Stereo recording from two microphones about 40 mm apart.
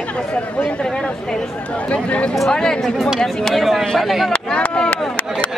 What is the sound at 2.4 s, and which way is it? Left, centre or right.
Speech, centre.